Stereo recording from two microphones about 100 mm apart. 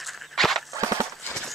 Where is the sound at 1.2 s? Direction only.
5° left (ahead or behind).